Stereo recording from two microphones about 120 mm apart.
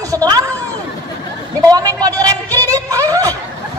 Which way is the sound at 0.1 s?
30° right (ahead or behind).